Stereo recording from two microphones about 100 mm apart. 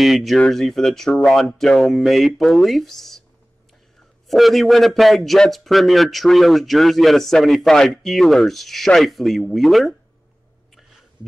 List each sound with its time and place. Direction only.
0.0 s a man's voice: centre (ahead or behind)
4.3 s a man's voice: centre (ahead or behind)